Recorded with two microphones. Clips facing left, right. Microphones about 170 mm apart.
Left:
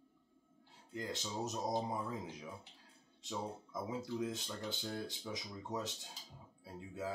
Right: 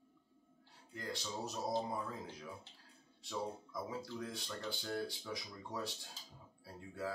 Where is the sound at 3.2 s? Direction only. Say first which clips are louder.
Right 1 dB; 20° left (ahead or behind).